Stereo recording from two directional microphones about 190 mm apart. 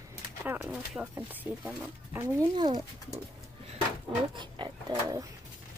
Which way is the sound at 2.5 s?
25° right (ahead or behind).